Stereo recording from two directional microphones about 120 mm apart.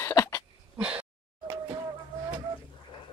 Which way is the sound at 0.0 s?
25° left (ahead or behind).